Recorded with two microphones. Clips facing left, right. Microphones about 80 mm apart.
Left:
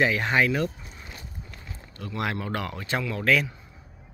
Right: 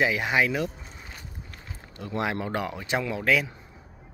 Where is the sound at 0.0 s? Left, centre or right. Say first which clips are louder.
Left 1 dB; centre.